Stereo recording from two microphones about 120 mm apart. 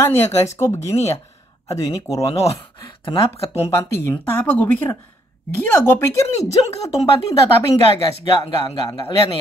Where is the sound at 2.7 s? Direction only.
45° left (ahead or behind).